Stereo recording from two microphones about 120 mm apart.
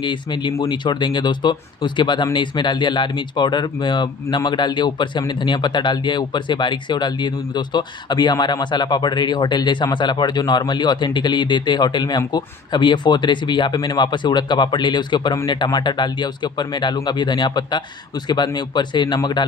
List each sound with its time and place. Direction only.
0.0 s speech: 40° left (ahead or behind)